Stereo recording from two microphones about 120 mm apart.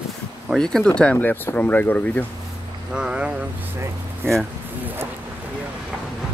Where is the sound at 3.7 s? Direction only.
20° right (ahead or behind).